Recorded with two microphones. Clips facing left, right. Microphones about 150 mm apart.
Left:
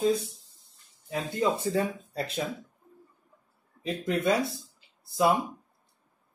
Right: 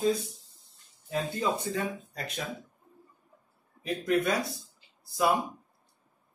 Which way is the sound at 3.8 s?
25° left (ahead or behind).